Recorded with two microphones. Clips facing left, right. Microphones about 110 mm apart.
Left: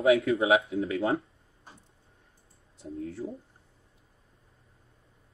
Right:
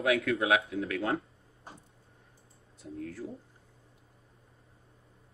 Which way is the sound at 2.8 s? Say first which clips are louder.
Left 3 dB; 30° left (ahead or behind).